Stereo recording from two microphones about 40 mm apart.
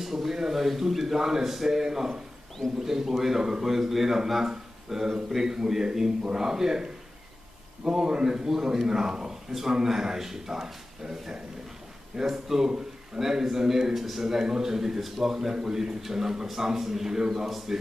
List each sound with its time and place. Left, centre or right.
0.0 s a man's voice: centre